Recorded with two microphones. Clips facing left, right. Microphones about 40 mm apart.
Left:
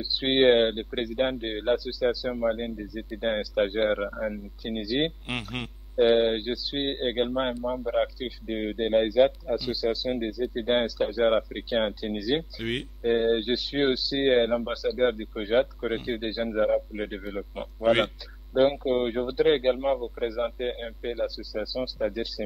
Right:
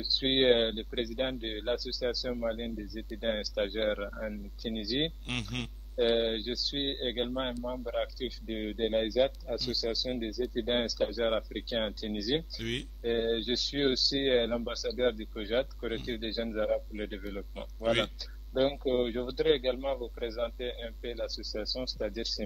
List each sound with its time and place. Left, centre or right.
0.0 s speech: left